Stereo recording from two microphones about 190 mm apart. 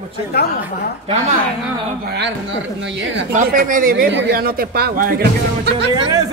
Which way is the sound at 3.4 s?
45° right (ahead or behind).